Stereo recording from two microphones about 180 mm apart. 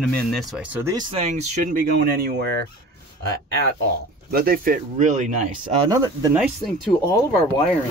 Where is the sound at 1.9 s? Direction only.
60° right (ahead or behind).